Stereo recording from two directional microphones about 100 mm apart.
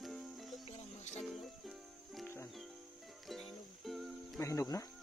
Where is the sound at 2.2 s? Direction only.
25° left (ahead or behind).